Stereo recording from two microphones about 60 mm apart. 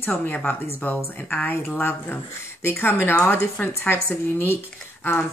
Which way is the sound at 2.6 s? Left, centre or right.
Left.